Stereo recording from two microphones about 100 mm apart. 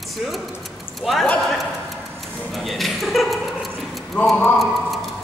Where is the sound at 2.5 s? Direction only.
Centre (ahead or behind).